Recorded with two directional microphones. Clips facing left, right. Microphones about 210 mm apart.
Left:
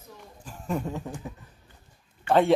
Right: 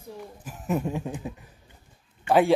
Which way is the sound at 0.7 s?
10° right (ahead or behind).